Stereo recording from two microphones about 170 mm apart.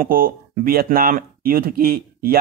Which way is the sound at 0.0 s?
55° right (ahead or behind).